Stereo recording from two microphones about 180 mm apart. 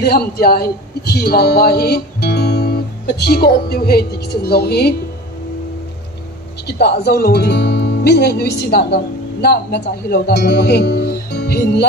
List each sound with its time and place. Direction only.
0.0 s speech: 60° left (ahead or behind)
6.6 s speech: 65° left (ahead or behind)